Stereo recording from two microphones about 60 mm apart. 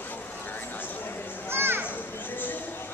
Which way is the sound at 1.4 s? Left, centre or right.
Right.